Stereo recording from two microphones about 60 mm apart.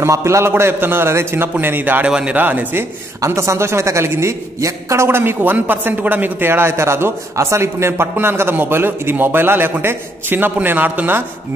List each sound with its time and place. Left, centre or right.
0.0 s a woman's voice: right
2.0 s speech: centre
2.3 s a woman's voice: right
3.3 s a woman's voice: right